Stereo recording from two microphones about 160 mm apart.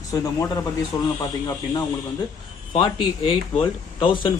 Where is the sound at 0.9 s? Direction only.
20° left (ahead or behind).